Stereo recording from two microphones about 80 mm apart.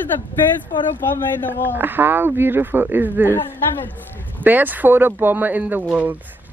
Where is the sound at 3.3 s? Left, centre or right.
Left.